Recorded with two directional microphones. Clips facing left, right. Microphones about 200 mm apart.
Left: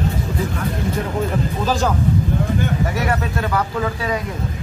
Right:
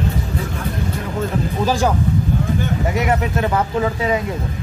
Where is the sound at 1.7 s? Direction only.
15° right (ahead or behind).